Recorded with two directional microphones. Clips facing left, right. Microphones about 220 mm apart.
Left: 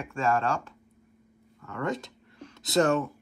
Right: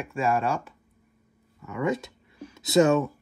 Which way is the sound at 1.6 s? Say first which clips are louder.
Right 4 dB; 10° right (ahead or behind).